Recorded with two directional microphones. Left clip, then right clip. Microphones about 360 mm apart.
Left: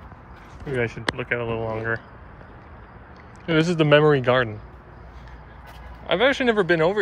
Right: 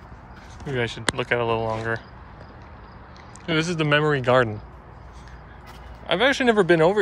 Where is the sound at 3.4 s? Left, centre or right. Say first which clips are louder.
Left 3 dB; centre.